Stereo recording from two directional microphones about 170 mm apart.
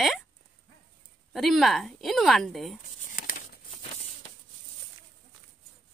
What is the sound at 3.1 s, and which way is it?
Crumpling, 50° left (ahead or behind).